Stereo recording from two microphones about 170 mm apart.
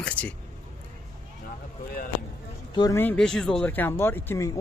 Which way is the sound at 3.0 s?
5° left (ahead or behind).